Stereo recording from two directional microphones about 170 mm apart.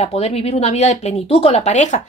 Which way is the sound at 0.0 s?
35° left (ahead or behind).